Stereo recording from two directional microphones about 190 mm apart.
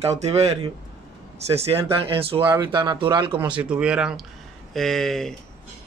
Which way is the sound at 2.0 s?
30° right (ahead or behind).